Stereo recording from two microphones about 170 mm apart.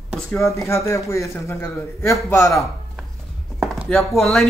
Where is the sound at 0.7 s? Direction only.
15° left (ahead or behind).